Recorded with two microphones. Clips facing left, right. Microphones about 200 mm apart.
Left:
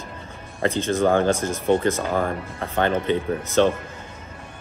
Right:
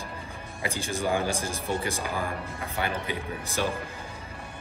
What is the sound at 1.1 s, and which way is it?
Speech, 60° left (ahead or behind).